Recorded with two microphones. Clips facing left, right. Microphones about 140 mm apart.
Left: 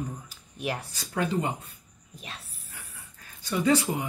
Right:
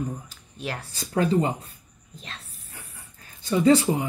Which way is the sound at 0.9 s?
35° right (ahead or behind).